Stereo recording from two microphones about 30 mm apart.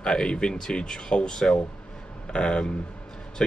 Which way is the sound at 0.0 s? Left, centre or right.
Left.